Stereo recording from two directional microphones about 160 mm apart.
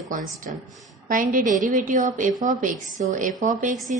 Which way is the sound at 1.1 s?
55° right (ahead or behind).